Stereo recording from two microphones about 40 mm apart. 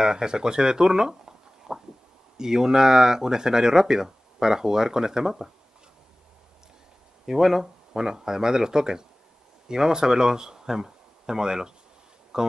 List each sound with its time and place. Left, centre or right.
0.0 s speech: centre
1.7 s a sound: centre
2.3 s speech: centre
7.2 s speech: centre